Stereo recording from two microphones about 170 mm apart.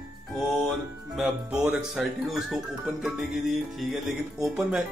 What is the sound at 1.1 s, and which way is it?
Speech, 5° right (ahead or behind).